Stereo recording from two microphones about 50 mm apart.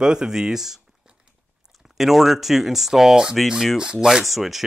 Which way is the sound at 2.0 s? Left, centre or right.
Centre.